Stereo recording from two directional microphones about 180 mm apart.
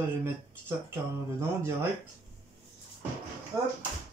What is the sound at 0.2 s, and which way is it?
Speech, 15° right (ahead or behind).